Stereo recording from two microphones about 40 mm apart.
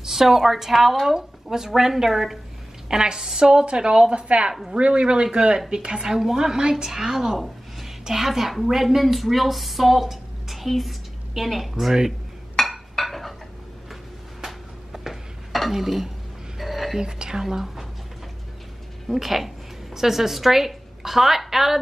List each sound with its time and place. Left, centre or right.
0.1 s a woman's voice: centre
6.1 s a woman's voice: centre
12.6 s a sound: centre
14.4 s a sound: centre
15.7 s speech: centre
16.5 s a sound: centre
17.0 s a woman's voice: centre
17.4 s a woman's voice: centre
19.0 s a woman's voice: centre